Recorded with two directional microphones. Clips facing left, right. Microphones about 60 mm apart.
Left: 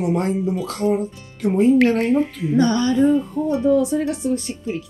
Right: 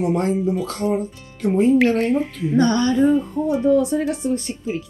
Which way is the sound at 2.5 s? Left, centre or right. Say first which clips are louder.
Even; right.